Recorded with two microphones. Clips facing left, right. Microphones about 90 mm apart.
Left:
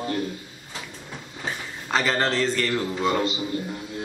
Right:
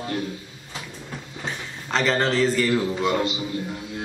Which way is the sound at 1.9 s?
Centre (ahead or behind).